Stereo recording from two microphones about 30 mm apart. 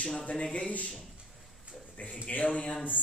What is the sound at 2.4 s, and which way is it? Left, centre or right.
Speech, left.